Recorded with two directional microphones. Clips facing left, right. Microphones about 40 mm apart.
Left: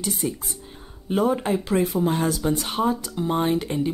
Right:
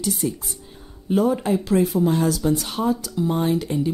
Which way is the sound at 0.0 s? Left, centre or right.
Left.